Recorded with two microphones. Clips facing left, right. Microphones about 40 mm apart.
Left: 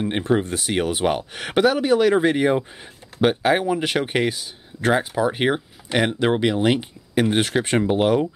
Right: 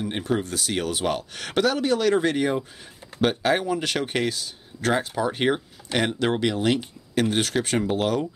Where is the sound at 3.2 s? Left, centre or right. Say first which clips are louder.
Left 4 dB; centre.